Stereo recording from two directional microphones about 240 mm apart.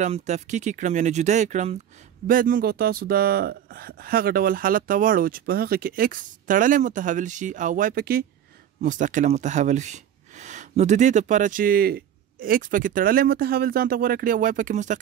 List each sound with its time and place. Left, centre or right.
0.0 s speech: right